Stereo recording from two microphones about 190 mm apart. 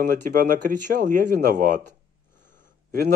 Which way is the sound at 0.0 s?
45° right (ahead or behind).